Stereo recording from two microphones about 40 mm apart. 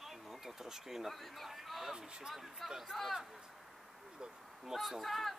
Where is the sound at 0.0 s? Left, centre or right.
Centre.